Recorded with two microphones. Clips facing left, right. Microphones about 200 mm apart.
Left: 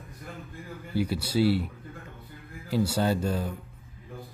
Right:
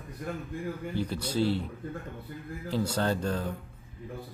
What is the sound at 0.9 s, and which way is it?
Speech, 10° left (ahead or behind).